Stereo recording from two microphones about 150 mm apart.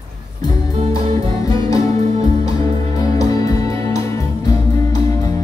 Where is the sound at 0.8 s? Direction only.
35° right (ahead or behind).